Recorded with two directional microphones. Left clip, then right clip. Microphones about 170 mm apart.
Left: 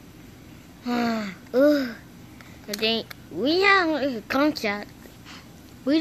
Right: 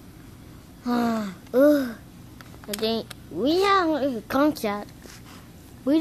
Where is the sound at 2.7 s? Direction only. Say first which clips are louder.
Left 2 dB; 15° right (ahead or behind).